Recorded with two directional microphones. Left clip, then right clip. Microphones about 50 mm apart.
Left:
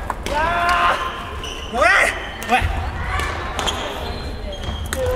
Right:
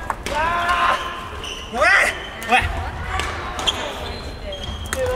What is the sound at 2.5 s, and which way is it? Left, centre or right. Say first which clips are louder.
Basketball bounce: right 1 dB; centre.